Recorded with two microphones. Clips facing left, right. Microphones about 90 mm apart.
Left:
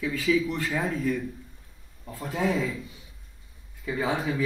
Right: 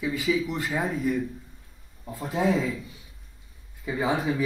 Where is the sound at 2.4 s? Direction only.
25° right (ahead or behind).